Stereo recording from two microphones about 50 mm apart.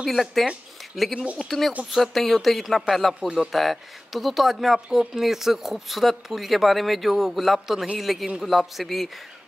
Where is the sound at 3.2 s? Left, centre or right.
Centre.